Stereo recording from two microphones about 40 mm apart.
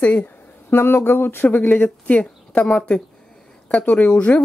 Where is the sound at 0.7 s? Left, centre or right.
Left.